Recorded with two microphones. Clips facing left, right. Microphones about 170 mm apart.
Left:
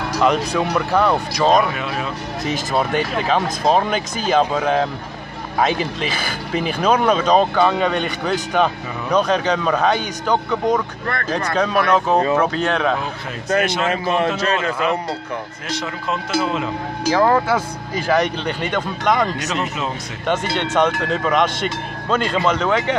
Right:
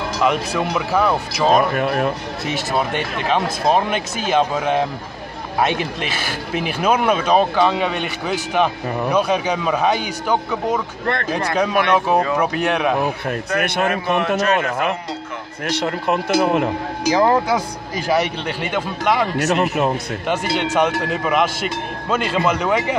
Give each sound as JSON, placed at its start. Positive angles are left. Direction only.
{"t": 0.2, "sound": "speech", "side_deg": -5}
{"t": 1.7, "sound": "speech", "side_deg": -50}
{"t": 2.4, "sound": "speech", "side_deg": -5}
{"t": 13.7, "sound": "a man's voice", "side_deg": -60}
{"t": 17.0, "sound": "speech", "side_deg": -15}
{"t": 19.4, "sound": "a man's voice", "side_deg": -55}
{"t": 20.2, "sound": "speech", "side_deg": -10}